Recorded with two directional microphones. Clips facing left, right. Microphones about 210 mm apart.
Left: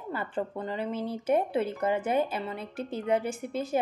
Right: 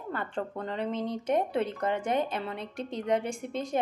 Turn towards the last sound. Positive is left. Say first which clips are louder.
# left 1 dB
turn(degrees=5)  # may be behind; listen again after turning